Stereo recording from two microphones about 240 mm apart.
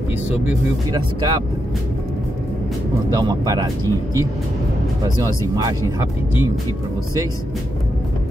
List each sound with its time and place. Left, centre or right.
0.9 s speech: centre
3.1 s speech: centre
5.9 s speech: centre